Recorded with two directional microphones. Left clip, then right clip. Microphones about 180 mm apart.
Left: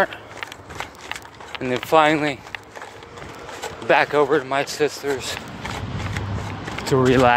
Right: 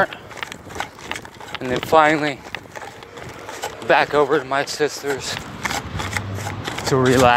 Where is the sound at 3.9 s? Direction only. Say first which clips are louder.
Right 1 dB; 5° left (ahead or behind).